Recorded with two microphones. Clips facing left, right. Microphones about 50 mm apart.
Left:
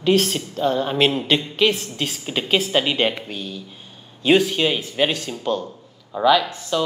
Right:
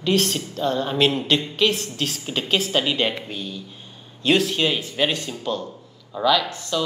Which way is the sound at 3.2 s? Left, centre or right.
Centre.